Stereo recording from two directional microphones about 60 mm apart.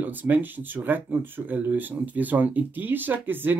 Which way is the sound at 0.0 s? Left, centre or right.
Right.